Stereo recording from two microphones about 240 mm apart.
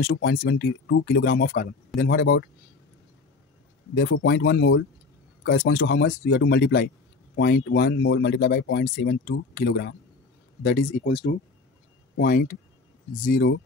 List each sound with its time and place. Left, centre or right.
0.0 s speech: left
3.9 s speech: left